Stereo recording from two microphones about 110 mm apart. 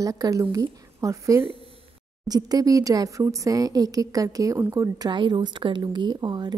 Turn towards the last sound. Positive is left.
turn(degrees=-40)  # may be behind; listen again after turning